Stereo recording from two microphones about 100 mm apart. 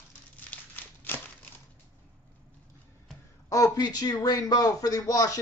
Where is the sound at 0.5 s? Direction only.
15° left (ahead or behind).